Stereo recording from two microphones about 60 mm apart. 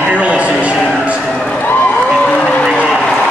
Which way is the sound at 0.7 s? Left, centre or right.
Centre.